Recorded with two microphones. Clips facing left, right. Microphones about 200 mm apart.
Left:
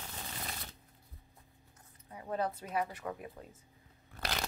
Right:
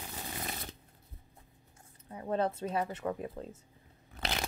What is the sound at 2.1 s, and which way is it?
A woman's voice, 30° right (ahead or behind).